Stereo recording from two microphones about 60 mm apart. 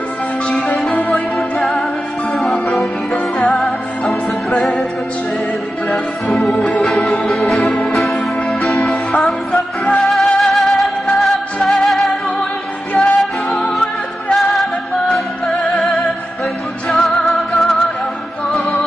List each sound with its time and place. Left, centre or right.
0.7 s music: centre
5.9 s organ: centre
12.9 s music: centre